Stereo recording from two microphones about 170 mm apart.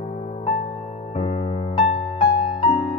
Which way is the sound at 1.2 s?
40° left (ahead or behind).